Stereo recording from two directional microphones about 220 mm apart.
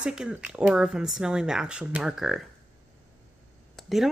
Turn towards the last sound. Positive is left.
turn(degrees=0)  # may be behind; listen again after turning